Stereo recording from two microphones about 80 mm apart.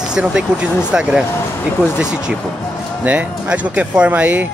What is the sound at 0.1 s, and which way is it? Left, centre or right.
Speech, centre.